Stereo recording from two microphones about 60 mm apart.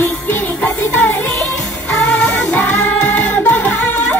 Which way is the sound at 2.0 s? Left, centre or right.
Centre.